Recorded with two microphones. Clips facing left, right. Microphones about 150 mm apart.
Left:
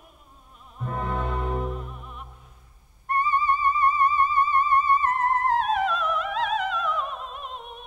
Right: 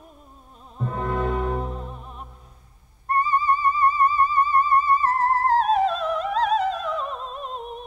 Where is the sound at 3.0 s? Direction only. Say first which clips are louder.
Right 2 dB; 35° right (ahead or behind).